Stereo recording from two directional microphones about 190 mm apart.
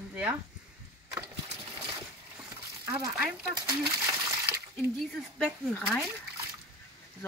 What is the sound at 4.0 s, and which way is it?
Coin, 20° right (ahead or behind).